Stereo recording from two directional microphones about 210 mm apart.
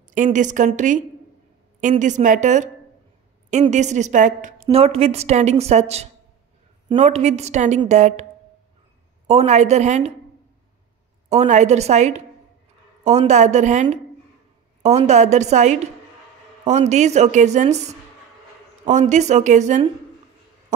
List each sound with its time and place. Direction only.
0.1 s a woman's voice: 35° right (ahead or behind)
9.3 s a woman's voice: 30° right (ahead or behind)
11.2 s a woman's voice: 35° right (ahead or behind)